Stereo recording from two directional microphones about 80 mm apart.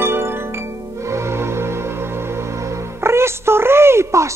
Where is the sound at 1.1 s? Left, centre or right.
Right.